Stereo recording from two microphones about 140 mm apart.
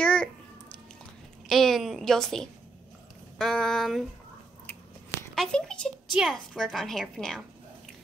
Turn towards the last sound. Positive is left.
turn(degrees=5)  # may be behind; listen again after turning